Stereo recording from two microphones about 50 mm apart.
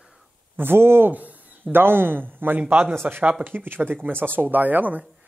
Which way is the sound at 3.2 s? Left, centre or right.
Right.